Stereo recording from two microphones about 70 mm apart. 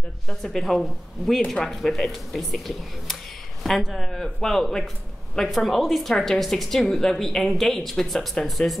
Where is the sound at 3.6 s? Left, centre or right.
Centre.